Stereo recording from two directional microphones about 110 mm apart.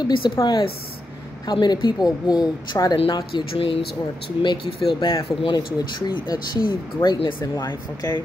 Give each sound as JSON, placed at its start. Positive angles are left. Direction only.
{"t": 0.0, "sound": "speech", "side_deg": 45}
{"t": 1.5, "sound": "a woman's voice", "side_deg": 40}
{"t": 5.4, "sound": "speech", "side_deg": 45}
{"t": 7.5, "sound": "a woman's voice", "side_deg": 35}